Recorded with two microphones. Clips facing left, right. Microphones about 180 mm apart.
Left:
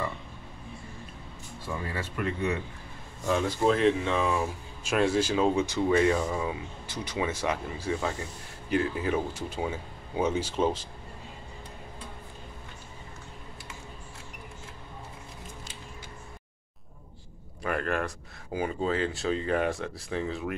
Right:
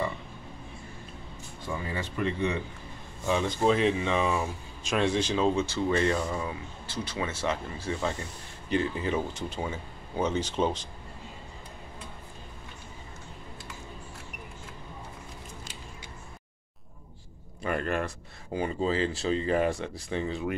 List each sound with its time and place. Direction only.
2.0 s speech: 5° left (ahead or behind)
17.6 s speech: centre (ahead or behind)